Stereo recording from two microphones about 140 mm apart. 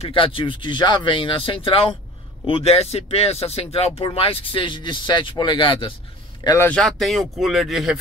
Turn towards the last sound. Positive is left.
turn(degrees=0)  # may be behind; listen again after turning